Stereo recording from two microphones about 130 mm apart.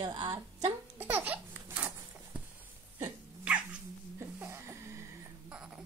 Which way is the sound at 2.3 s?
10° right (ahead or behind).